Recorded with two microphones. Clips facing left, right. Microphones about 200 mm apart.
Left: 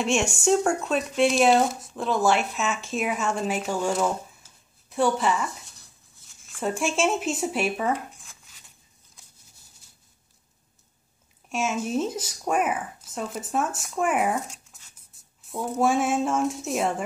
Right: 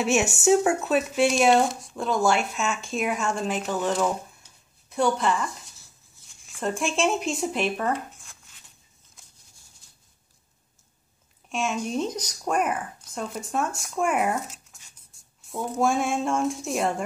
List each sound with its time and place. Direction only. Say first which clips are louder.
0.0 s a woman's voice: right 2 dB; 5° right (ahead or behind)
11.4 s speech: left 1 dB; 5° left (ahead or behind)